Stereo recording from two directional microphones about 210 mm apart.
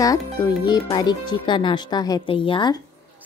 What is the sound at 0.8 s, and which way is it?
Speech, 20° left (ahead or behind).